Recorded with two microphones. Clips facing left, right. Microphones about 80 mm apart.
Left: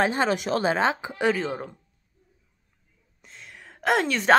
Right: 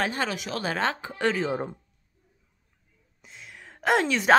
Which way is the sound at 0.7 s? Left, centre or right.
Centre.